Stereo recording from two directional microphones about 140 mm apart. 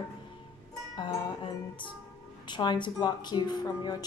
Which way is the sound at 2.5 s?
30° left (ahead or behind).